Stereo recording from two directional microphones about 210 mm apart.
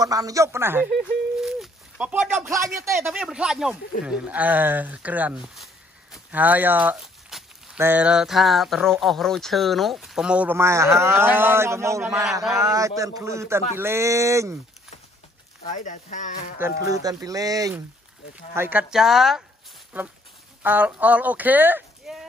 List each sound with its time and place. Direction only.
0.0 s a man's voice: 15° right (ahead or behind)
15.7 s speech: 35° left (ahead or behind)
16.8 s a man's voice: 15° right (ahead or behind)